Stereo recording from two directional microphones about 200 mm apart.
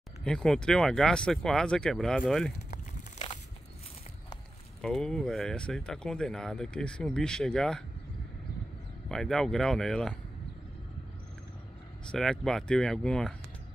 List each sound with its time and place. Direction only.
0.2 s speech: 5° left (ahead or behind)
2.7 s crumpling: 30° left (ahead or behind)
4.8 s speech: 5° left (ahead or behind)
9.1 s speech: centre (ahead or behind)
12.1 s speech: 5° left (ahead or behind)